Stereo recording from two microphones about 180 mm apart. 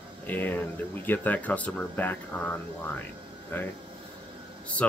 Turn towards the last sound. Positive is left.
turn(degrees=5)  # may be behind; listen again after turning